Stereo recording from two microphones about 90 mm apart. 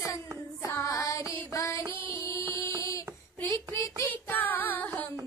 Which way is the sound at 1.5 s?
35° left (ahead or behind).